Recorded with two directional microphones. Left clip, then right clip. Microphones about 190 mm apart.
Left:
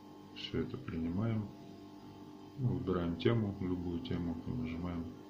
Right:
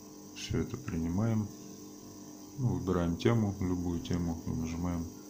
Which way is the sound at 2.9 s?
30° right (ahead or behind).